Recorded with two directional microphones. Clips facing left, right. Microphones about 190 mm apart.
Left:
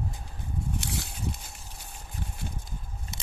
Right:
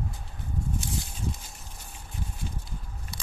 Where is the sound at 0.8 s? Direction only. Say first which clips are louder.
Right 1 dB; 75° left (ahead or behind).